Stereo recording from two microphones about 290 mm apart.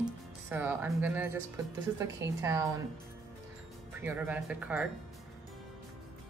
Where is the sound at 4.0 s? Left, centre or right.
Centre.